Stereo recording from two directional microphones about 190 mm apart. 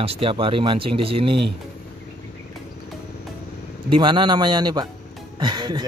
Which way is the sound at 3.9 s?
25° right (ahead or behind).